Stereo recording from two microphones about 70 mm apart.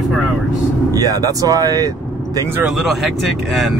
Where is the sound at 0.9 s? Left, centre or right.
Right.